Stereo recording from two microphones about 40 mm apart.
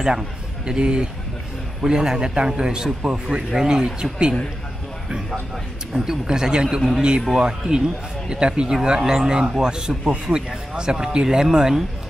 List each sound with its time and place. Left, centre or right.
0.7 s a man's voice: right
5.9 s a man's voice: centre